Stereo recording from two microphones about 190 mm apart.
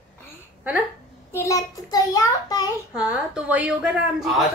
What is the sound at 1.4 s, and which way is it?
A child's voice, 15° left (ahead or behind).